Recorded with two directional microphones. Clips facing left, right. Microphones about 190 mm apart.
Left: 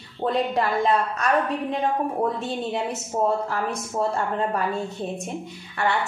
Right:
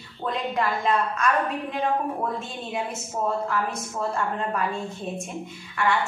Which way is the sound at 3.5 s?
35° left (ahead or behind).